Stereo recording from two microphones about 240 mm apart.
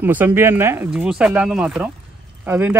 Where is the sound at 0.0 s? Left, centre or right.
Centre.